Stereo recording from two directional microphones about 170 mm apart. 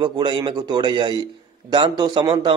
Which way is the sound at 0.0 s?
25° right (ahead or behind).